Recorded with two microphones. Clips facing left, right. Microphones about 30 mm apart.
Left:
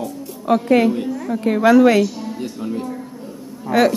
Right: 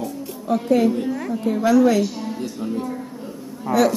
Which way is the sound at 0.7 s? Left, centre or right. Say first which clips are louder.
Even; left.